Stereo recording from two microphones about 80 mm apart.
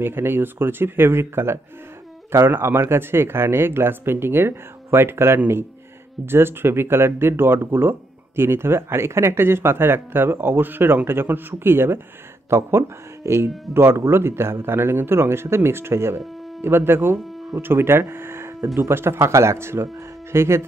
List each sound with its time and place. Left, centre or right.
0.0 s speech: right